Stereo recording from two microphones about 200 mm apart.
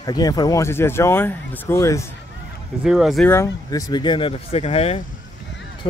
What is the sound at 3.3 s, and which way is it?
Speech, 15° left (ahead or behind).